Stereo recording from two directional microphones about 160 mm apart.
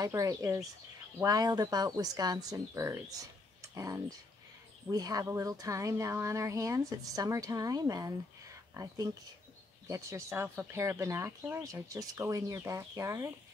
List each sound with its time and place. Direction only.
0.0 s speech: 20° right (ahead or behind)